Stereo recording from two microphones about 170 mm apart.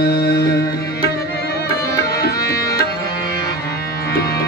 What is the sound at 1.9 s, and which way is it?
Tabla, 70° left (ahead or behind).